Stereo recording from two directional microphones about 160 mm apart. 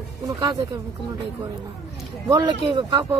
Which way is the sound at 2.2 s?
30° right (ahead or behind).